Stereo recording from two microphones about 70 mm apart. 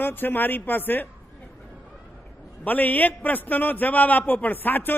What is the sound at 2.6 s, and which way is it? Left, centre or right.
A man's voice, left.